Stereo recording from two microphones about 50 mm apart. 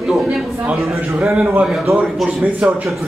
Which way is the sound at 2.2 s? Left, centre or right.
Right.